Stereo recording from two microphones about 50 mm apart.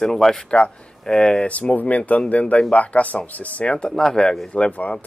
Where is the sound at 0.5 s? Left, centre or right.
Centre.